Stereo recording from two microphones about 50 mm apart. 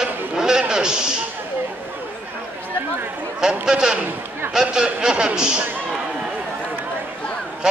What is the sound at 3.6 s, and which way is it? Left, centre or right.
Speech, centre.